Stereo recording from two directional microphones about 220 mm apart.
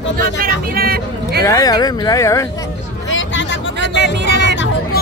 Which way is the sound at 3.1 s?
60° left (ahead or behind).